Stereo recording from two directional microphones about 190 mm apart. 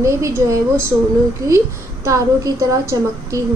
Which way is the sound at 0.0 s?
15° right (ahead or behind).